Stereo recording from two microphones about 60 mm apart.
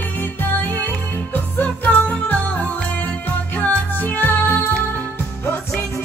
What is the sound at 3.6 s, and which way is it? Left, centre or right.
Music, left.